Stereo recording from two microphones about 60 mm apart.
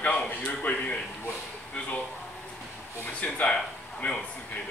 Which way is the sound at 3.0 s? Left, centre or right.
Left.